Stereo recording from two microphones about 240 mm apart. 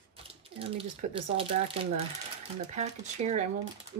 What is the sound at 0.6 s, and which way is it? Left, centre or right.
Speech, right.